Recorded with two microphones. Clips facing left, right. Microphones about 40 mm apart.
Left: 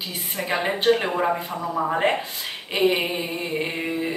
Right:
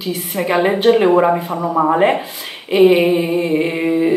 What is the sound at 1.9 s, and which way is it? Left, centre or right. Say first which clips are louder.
Speech: right 6 dB; centre.